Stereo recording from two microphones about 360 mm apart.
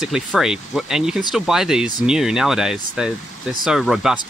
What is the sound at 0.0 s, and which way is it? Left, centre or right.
Speech, centre.